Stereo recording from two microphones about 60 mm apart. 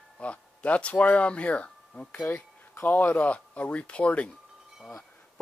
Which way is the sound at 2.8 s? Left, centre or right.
Left.